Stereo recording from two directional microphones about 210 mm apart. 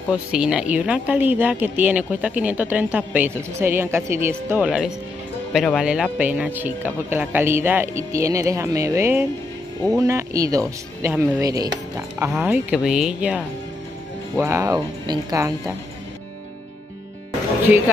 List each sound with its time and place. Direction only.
0.3 s a woman's voice: 5° right (ahead or behind)
14.4 s a woman's voice: 15° right (ahead or behind)